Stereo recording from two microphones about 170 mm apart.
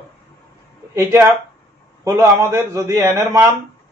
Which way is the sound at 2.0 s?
15° right (ahead or behind).